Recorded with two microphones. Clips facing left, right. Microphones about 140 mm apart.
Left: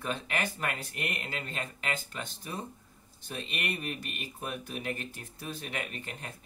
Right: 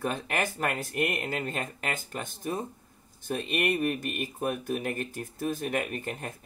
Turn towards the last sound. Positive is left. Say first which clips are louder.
# right 7 dB
turn(degrees=-45)  # may be behind; listen again after turning